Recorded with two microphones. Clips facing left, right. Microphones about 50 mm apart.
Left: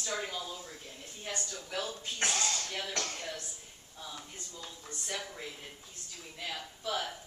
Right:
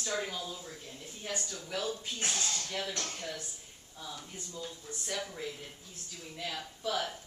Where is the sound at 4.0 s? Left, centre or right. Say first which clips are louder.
Right 1 dB; centre.